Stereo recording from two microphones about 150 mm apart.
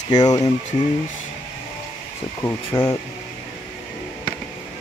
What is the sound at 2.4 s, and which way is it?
Speech, 15° left (ahead or behind).